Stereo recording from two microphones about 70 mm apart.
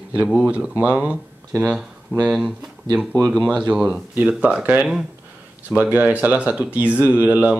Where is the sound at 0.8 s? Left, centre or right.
Centre.